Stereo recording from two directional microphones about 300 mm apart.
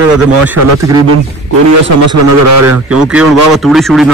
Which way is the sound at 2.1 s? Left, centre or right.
Right.